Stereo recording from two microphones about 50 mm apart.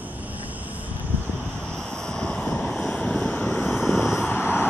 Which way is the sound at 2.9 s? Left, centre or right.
Centre.